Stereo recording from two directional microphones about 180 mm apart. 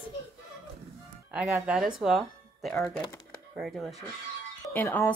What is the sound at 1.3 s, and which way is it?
Speech, 5° right (ahead or behind).